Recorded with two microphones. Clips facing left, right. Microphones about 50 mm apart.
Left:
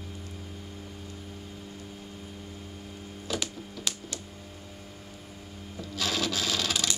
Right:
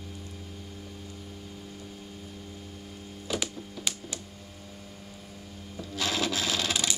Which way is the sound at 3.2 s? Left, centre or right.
Centre.